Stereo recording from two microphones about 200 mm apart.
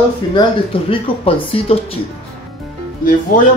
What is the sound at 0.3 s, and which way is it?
Speech, 25° left (ahead or behind).